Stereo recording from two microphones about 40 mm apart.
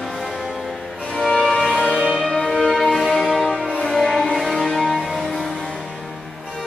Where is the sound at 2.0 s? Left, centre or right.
Centre.